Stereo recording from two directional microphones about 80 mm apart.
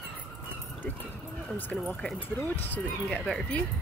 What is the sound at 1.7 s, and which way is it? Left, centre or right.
Speech, centre.